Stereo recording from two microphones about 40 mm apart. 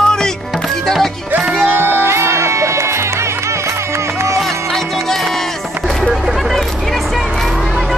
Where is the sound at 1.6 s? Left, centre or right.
Right.